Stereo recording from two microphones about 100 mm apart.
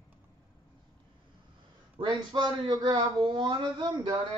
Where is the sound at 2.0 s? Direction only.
50° right (ahead or behind).